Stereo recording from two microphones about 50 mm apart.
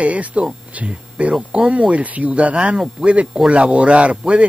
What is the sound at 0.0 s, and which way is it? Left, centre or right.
A man's voice, right.